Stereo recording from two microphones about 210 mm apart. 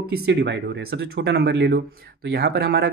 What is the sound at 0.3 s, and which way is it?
Speech, 55° right (ahead or behind).